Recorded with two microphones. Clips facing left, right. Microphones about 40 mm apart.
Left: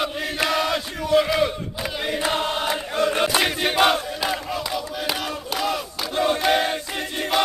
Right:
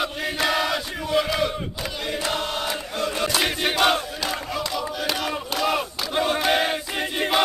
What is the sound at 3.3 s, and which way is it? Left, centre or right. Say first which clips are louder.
Battle cry: left 2 dB; centre.